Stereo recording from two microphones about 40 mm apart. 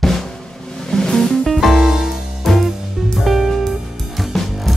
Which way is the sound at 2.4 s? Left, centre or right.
Centre.